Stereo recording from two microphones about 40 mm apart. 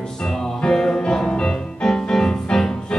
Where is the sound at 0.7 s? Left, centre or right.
Centre.